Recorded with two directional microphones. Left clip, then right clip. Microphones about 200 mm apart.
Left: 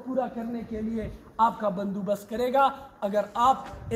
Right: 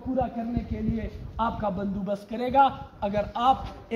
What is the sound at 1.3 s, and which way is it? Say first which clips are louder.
A man's voice: left 4 dB; 25° left (ahead or behind).